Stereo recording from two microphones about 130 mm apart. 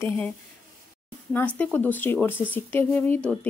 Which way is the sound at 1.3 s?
10° left (ahead or behind).